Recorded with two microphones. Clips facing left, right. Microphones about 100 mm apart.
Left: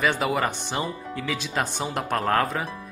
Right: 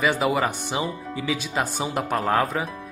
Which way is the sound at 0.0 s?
Centre (ahead or behind).